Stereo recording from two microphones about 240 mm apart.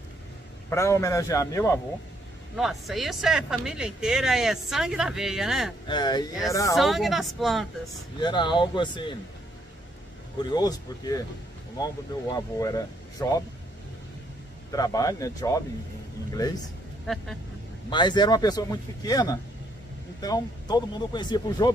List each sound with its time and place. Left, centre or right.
0.7 s speech: centre
2.5 s speech: centre
5.9 s speech: centre
6.8 s speech: centre
8.2 s speech: centre
10.5 s speech: centre
14.7 s speech: centre
17.0 s speech: centre
17.8 s speech: centre